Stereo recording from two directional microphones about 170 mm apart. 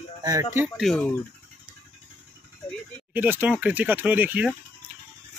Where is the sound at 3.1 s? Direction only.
10° right (ahead or behind).